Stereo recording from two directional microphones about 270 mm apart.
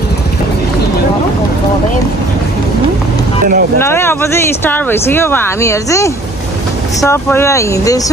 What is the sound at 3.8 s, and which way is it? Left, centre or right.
Speech, centre.